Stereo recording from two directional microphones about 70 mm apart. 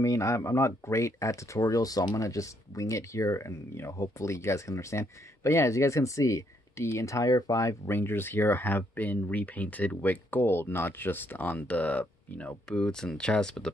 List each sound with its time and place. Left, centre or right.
0.0 s speech: left
12.6 s speech: centre